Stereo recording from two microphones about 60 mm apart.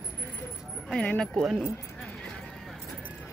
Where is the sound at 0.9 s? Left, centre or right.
Centre.